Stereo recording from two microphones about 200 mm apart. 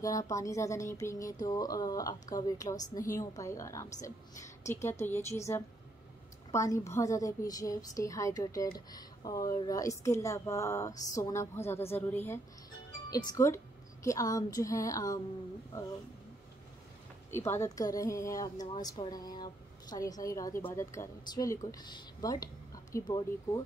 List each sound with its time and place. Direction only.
0.0 s a woman's voice: 15° left (ahead or behind)
17.3 s a woman's voice: 10° left (ahead or behind)